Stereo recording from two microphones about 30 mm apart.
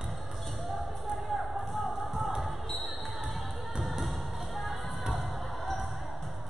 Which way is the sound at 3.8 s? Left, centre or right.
Centre.